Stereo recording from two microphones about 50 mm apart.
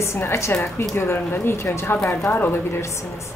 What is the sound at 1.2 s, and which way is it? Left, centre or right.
Speech, left.